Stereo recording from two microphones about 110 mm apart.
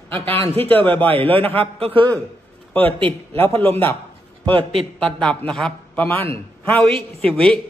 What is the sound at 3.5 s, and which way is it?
Speech, 60° right (ahead or behind).